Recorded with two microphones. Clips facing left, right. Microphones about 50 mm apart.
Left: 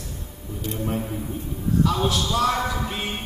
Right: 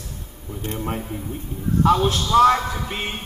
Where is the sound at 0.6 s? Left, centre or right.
Right.